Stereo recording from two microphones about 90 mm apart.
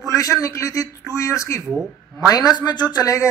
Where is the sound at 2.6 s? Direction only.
50° left (ahead or behind).